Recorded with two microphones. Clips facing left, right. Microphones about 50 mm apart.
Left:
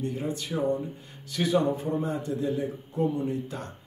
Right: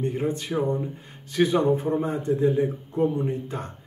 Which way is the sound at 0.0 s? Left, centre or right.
Right.